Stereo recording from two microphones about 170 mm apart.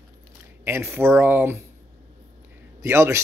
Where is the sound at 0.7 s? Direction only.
15° right (ahead or behind).